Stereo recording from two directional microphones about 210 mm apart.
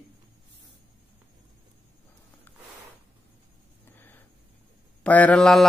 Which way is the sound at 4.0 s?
10° left (ahead or behind).